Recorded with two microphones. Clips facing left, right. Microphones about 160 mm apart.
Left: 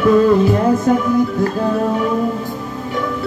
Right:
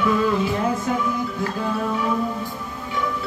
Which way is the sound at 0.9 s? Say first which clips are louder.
Left 9 dB; 45° left (ahead or behind).